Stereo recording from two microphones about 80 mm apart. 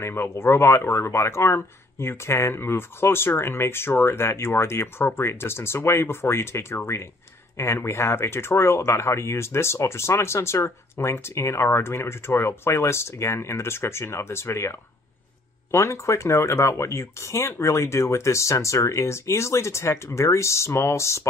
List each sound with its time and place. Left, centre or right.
0.0 s speech: left